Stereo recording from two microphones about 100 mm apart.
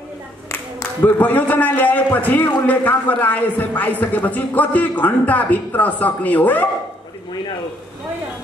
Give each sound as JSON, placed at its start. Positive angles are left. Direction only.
{"t": 0.5, "sound": "a man's voice", "side_deg": 25}